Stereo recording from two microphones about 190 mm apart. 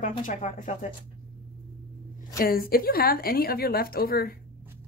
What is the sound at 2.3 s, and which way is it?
A woman's voice, 50° left (ahead or behind).